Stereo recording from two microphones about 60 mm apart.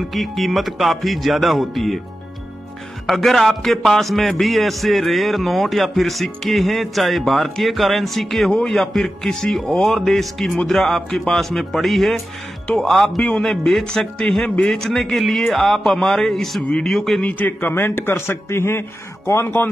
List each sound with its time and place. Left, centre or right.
0.1 s music: centre
3.1 s music: centre
12.6 s speech: centre
12.9 s music: centre
13.2 s speech: centre
14.4 s a man's voice: centre
14.7 s music: centre
17.2 s a man's voice: left
19.4 s a man's voice: left